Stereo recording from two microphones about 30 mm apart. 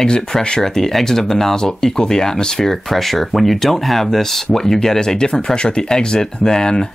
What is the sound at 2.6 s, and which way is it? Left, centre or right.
Speech, centre.